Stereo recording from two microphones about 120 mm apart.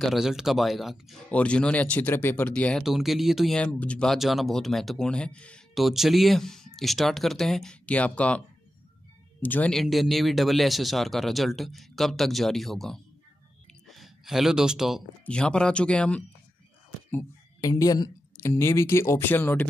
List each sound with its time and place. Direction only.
0.0 s speech: centre (ahead or behind)
1.3 s speech: 10° left (ahead or behind)
2.8 s speech: centre (ahead or behind)
5.8 s speech: centre (ahead or behind)
9.4 s speech: 15° left (ahead or behind)
9.7 s speech: centre (ahead or behind)
13.7 s a sound: centre (ahead or behind)
15.2 s speech: 10° left (ahead or behind)
17.6 s a woman's voice: 30° left (ahead or behind)
18.4 s speech: 20° left (ahead or behind)